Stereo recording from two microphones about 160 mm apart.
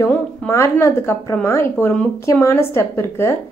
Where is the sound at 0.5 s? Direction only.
15° left (ahead or behind).